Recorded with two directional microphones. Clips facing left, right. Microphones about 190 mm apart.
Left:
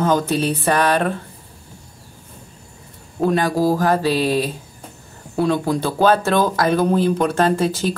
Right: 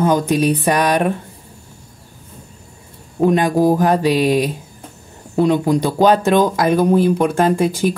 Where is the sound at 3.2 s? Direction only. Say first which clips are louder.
Right 4 dB; 20° right (ahead or behind).